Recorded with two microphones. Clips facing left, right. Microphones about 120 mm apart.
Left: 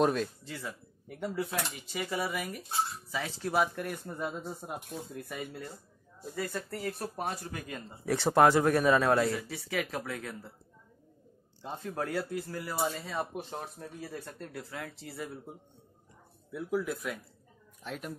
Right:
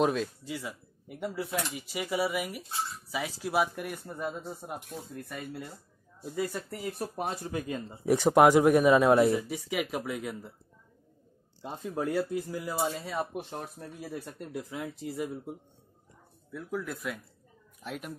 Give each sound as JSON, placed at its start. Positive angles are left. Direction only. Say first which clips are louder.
{"t": 0.0, "sound": "speech", "louder": "even", "side_deg": 0}
{"t": 0.5, "sound": "speech", "louder": "right 3 dB", "side_deg": -10}
{"t": 6.3, "sound": "speech", "louder": "right 3 dB", "side_deg": -15}
{"t": 11.6, "sound": "speech", "louder": "right 3 dB", "side_deg": -15}
{"t": 13.9, "sound": "speech", "louder": "right 4 dB", "side_deg": -10}
{"t": 16.5, "sound": "speech", "louder": "left 3 dB", "side_deg": 5}